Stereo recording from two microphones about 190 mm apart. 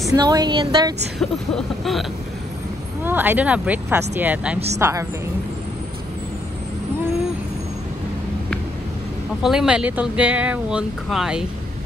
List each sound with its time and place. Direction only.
0.1 s a woman's voice: 20° right (ahead or behind)
1.5 s speech: centre (ahead or behind)
3.0 s speech: 10° right (ahead or behind)
9.4 s speech: 5° right (ahead or behind)